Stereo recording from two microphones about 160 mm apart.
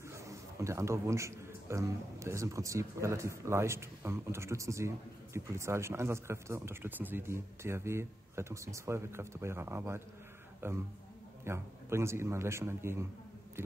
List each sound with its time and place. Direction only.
0.1 s a man's voice: 20° right (ahead or behind)